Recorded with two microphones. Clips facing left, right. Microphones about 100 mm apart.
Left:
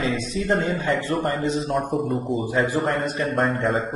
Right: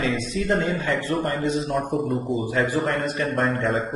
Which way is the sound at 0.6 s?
25° left (ahead or behind).